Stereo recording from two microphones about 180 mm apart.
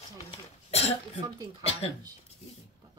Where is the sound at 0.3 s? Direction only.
35° left (ahead or behind).